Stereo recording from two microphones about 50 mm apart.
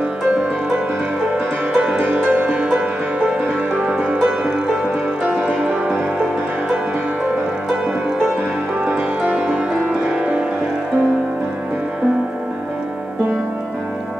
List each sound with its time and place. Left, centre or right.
1.7 s music: centre
8.8 s music: right